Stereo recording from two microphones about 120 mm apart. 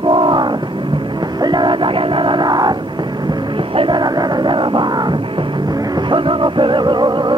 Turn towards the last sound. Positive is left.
turn(degrees=-35)  # may be behind; listen again after turning